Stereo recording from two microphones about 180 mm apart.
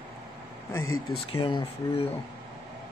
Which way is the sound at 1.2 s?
30° left (ahead or behind).